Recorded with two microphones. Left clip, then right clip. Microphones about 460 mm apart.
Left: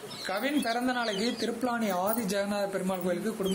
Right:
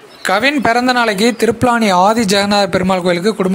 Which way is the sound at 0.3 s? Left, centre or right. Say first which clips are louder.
Right 18 dB; centre.